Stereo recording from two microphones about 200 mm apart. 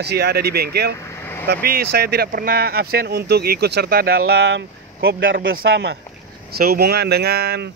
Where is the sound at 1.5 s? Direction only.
50° right (ahead or behind).